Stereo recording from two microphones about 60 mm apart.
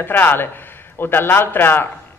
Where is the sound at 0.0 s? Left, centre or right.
Left.